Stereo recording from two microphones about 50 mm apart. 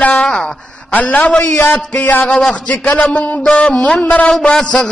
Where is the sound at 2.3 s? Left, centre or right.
Centre.